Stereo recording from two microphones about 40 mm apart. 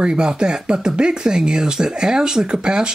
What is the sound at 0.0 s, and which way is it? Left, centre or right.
Speech, right.